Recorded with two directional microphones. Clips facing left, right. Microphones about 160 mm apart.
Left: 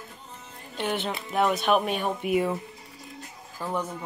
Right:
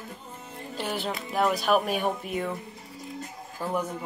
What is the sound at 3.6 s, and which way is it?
Speech, 10° right (ahead or behind).